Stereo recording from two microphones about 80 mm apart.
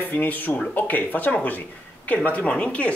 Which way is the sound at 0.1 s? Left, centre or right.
Left.